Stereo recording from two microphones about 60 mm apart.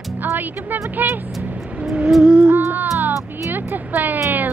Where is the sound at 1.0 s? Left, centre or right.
Right.